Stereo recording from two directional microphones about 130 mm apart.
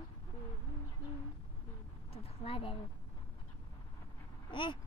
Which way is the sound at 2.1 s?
45° left (ahead or behind).